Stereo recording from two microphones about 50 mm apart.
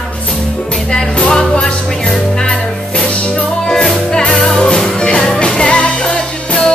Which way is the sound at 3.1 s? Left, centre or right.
Left.